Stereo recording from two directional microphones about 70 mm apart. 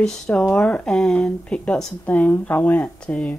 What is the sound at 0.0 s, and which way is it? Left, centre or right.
Speech, centre.